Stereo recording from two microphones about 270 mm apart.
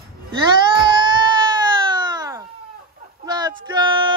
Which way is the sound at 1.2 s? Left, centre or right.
Centre.